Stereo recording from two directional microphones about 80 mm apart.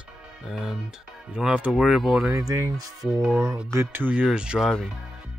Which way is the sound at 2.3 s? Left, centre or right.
Right.